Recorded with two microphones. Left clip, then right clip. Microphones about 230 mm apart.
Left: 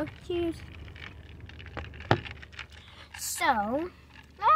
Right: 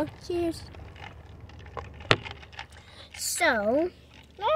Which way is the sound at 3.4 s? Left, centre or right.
Left.